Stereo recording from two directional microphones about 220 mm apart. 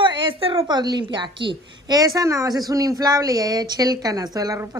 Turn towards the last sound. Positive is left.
turn(degrees=-15)  # may be behind; listen again after turning